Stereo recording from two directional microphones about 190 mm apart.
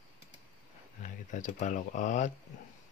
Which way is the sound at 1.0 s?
40° left (ahead or behind).